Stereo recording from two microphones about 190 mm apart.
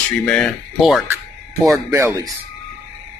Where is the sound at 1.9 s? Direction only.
15° right (ahead or behind).